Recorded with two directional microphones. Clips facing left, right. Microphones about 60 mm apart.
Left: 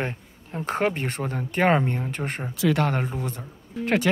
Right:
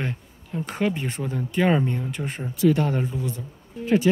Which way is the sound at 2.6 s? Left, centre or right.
Left.